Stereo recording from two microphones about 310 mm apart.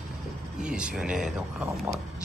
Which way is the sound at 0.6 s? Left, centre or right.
Centre.